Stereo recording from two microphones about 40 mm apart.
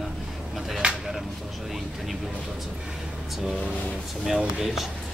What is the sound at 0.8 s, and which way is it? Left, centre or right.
Speech, right.